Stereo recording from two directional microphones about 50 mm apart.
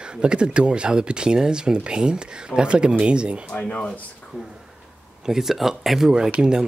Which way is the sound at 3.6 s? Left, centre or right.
Left.